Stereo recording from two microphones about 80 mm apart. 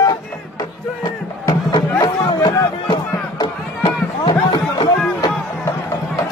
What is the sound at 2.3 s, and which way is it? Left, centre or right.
Music, left.